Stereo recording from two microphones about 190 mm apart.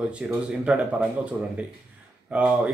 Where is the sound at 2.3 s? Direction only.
5° right (ahead or behind).